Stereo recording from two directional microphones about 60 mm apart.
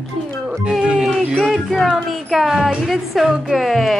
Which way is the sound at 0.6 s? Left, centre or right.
Centre.